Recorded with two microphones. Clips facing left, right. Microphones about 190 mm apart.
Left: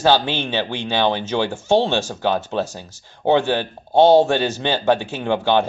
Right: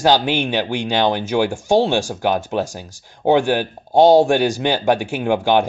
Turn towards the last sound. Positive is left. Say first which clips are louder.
# right 2 dB
turn(degrees=-15)  # may be behind; listen again after turning